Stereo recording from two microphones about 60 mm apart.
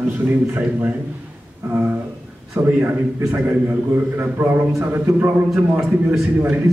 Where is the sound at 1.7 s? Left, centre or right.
Right.